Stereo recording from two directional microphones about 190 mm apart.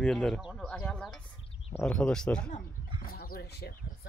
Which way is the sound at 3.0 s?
50° left (ahead or behind).